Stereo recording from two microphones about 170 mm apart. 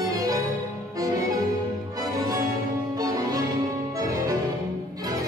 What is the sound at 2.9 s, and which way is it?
Music, 20° right (ahead or behind).